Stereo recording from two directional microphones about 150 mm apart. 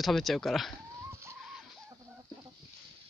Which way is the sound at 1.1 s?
15° right (ahead or behind).